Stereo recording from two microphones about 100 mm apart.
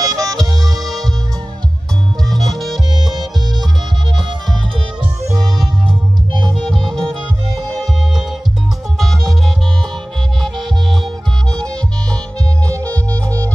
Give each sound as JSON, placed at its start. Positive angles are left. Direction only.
{"t": 0.0, "sound": "music", "side_deg": -35}
{"t": 0.7, "sound": "music", "side_deg": 0}
{"t": 2.2, "sound": "music", "side_deg": 0}
{"t": 5.9, "sound": "music", "side_deg": -50}
{"t": 6.6, "sound": "music", "side_deg": 5}
{"t": 11.5, "sound": "music", "side_deg": 10}
{"t": 12.6, "sound": "music", "side_deg": -35}